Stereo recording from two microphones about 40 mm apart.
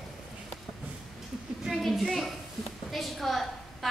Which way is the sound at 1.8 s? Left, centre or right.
Centre.